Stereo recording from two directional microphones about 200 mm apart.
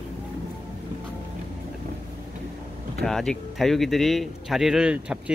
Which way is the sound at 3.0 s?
5° left (ahead or behind).